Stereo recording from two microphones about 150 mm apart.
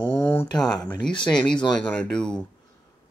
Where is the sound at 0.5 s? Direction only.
5° left (ahead or behind).